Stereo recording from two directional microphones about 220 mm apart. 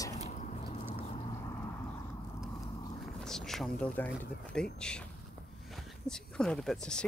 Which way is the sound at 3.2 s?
Centre (ahead or behind).